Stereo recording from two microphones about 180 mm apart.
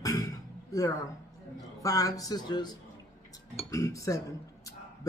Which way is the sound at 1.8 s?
20° left (ahead or behind).